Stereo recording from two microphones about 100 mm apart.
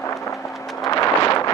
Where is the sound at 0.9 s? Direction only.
35° left (ahead or behind).